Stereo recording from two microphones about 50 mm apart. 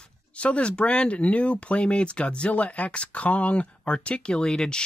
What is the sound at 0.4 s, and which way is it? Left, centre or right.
Speech, left.